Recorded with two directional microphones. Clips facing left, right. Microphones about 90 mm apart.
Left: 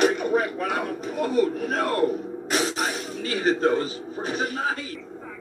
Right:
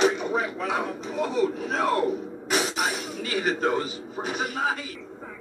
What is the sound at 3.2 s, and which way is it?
Music, 35° left (ahead or behind).